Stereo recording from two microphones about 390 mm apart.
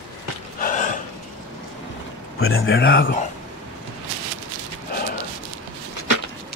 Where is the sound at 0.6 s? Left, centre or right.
Left.